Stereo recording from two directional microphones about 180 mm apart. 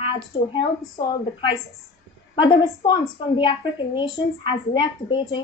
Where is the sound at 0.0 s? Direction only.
30° left (ahead or behind).